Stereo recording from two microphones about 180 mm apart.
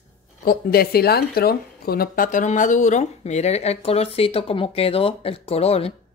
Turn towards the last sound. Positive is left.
turn(degrees=35)  # may be behind; listen again after turning